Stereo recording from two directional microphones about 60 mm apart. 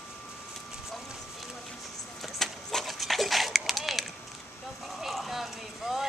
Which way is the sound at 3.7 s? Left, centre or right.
Centre.